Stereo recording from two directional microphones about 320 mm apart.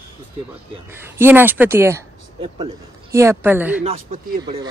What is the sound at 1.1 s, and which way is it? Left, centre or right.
Speech, centre.